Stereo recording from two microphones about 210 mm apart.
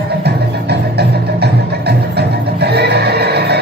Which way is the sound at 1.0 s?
50° right (ahead or behind).